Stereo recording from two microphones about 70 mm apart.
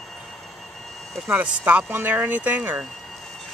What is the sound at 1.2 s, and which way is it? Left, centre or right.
Speech, right.